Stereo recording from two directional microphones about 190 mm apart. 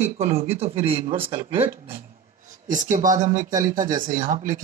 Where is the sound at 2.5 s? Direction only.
45° right (ahead or behind).